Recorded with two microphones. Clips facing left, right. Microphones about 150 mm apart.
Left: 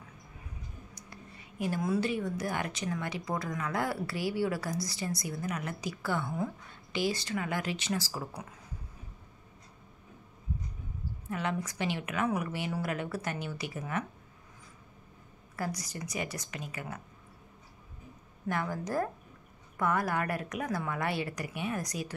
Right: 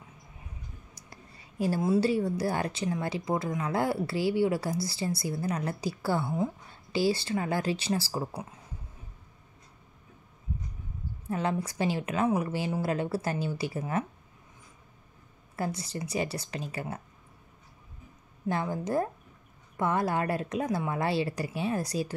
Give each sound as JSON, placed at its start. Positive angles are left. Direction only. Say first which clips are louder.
{"t": 0.9, "sound": "speech", "louder": "left 2 dB", "side_deg": -35}
{"t": 11.2, "sound": "a woman's voice", "louder": "right 4 dB", "side_deg": -30}
{"t": 15.5, "sound": "a woman's voice", "louder": "right 3 dB", "side_deg": -25}
{"t": 18.5, "sound": "speech", "louder": "right 3 dB", "side_deg": -25}